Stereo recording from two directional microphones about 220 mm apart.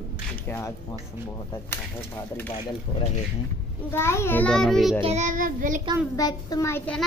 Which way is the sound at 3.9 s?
10° left (ahead or behind).